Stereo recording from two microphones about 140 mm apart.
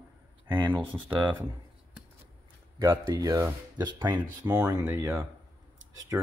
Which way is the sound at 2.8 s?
25° right (ahead or behind).